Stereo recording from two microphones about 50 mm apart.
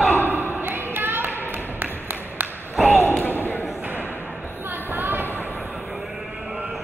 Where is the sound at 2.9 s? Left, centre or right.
Left.